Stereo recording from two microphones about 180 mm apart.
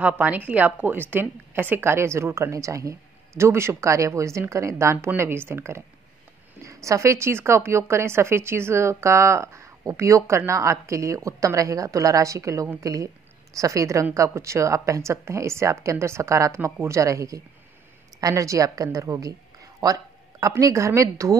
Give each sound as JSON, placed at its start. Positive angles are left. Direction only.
{"t": 0.0, "sound": "a woman's voice", "side_deg": -10}